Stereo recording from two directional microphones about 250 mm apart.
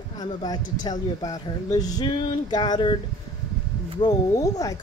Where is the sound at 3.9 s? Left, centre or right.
Centre.